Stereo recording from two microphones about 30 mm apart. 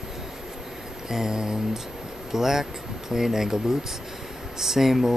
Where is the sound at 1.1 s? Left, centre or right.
Centre.